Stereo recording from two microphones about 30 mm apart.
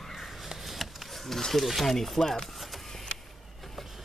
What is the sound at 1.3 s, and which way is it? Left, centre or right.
Speech, centre.